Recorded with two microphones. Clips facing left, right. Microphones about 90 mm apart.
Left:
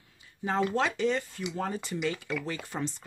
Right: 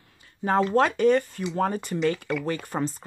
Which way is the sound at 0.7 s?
50° right (ahead or behind).